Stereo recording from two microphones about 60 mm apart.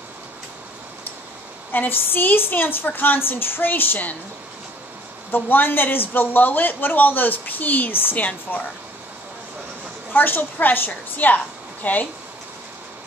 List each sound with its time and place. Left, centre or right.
1.7 s speech: left
5.3 s speech: left
10.1 s a woman's voice: left